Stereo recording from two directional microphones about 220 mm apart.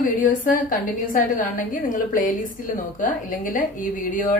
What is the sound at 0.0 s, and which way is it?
A woman's voice, 35° left (ahead or behind).